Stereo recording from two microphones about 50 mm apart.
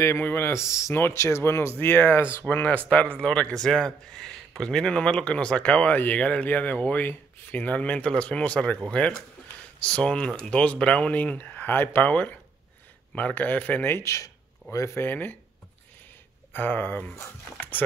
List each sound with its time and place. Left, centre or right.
0.2 s speech: left
0.5 s speech: left
1.1 s speech: left
3.2 s speech: centre; by 11.7 s left
11.7 s speech: left
12.0 s speech: left
14.1 s speech: left
15.0 s speech: left
16.5 s speech: left
17.6 s dog: left